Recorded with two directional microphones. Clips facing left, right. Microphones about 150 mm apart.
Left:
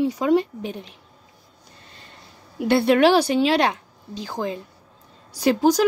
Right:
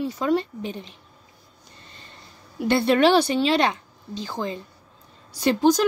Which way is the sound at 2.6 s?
10° left (ahead or behind).